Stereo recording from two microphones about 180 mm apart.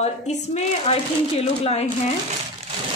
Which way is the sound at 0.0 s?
40° left (ahead or behind).